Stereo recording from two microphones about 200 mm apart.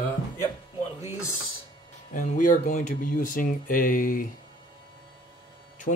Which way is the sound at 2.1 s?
40° left (ahead or behind).